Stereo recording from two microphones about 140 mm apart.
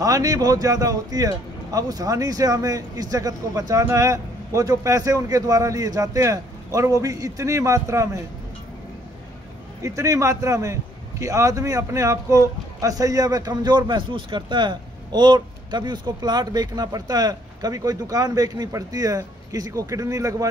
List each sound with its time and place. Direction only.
0.0 s a man's voice: 25° right (ahead or behind)
9.8 s a man's voice: 20° right (ahead or behind)